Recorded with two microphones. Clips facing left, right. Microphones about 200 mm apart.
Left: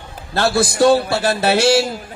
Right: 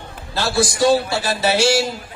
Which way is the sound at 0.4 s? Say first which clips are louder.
Left 3 dB; 55° left (ahead or behind).